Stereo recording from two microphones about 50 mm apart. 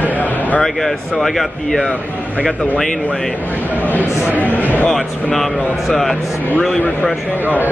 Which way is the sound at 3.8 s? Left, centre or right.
Left.